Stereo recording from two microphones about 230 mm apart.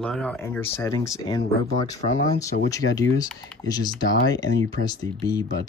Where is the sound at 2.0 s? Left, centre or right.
Left.